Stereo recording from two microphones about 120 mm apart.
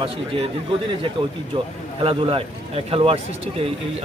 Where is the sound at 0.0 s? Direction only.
50° right (ahead or behind).